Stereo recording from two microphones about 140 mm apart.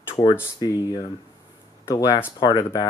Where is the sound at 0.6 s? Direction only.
30° left (ahead or behind).